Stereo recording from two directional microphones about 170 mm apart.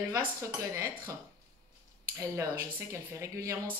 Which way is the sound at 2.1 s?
15° right (ahead or behind).